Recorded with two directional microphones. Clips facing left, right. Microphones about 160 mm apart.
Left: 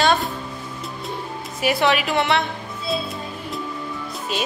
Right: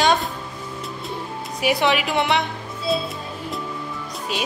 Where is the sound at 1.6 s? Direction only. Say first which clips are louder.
Even; 15° right (ahead or behind).